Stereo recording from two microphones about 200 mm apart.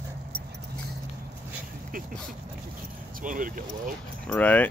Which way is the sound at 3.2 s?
45° right (ahead or behind).